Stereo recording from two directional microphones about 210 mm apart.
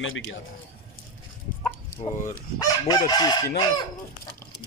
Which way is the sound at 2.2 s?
40° left (ahead or behind).